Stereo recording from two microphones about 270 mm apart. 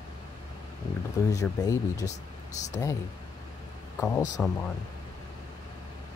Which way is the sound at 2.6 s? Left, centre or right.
Left.